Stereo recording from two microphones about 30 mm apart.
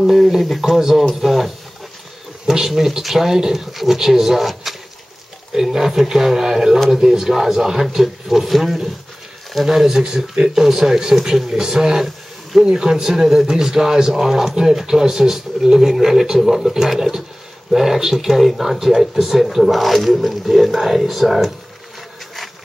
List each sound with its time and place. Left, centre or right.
0.0 s a man's voice: centre
2.4 s speech: centre
3.0 s a man's voice: centre
10.5 s a man's voice: centre; by 12.9 s right
12.9 s a man's voice: centre